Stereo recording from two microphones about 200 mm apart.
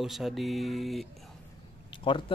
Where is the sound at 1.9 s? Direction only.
25° left (ahead or behind).